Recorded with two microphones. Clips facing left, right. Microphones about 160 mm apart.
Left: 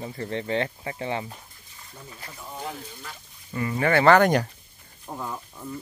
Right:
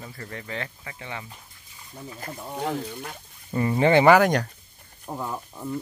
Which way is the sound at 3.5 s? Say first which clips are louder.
Right 4 dB; 30° right (ahead or behind).